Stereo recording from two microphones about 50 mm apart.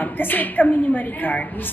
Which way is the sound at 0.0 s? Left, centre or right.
Left.